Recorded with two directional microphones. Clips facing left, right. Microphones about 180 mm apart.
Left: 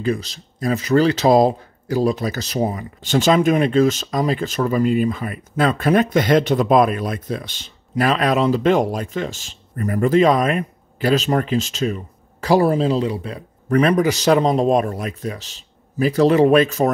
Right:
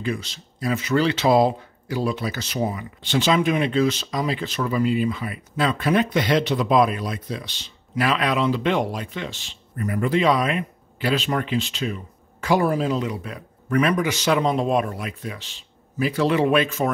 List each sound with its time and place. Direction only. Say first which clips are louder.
0.0 s speech: left 5 dB; 40° left (ahead or behind)